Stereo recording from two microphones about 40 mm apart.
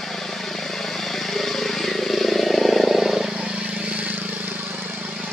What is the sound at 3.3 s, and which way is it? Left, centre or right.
Vehicle, centre.